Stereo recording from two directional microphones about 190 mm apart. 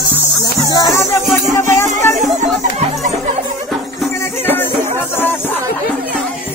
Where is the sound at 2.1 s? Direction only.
40° right (ahead or behind).